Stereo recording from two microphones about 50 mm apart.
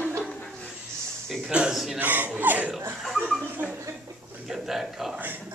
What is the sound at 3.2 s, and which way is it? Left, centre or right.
Chuckle, centre.